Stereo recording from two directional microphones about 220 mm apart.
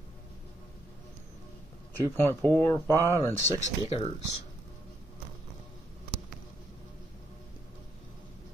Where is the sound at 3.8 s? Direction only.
25° left (ahead or behind).